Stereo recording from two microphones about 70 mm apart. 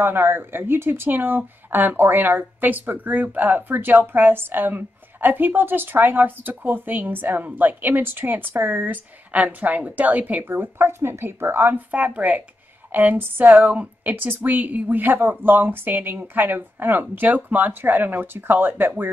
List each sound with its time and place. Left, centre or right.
0.0 s speech: right